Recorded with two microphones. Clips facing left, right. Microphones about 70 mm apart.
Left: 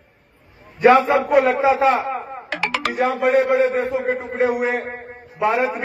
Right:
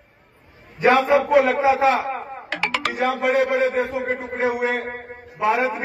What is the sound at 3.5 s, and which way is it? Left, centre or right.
Speech, left.